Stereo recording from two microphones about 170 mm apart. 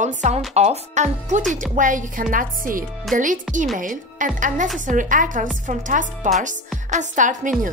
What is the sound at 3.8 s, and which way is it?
Speech, 50° right (ahead or behind).